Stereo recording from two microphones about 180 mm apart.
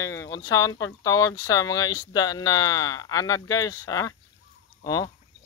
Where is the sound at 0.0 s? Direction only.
15° left (ahead or behind).